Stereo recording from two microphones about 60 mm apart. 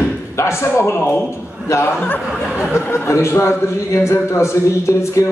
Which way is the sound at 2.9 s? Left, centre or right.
Left.